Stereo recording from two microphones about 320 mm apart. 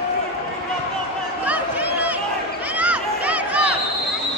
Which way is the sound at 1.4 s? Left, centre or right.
Centre.